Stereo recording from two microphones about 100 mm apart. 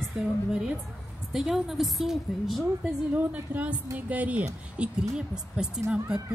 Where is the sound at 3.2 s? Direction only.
15° right (ahead or behind).